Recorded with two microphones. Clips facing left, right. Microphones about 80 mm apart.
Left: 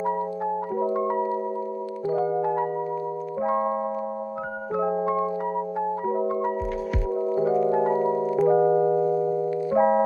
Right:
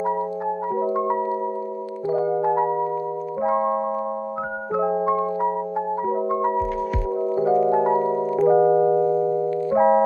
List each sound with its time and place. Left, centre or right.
0.7 s music: right
7.2 s organ: centre
7.7 s music: right
8.0 s music: centre
9.7 s music: centre